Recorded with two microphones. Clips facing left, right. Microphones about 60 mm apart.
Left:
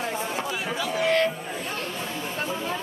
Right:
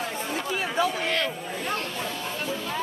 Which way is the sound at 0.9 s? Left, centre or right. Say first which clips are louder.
Left 5 dB; left.